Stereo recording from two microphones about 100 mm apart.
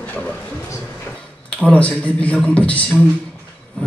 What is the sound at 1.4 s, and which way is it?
Speech, 10° left (ahead or behind).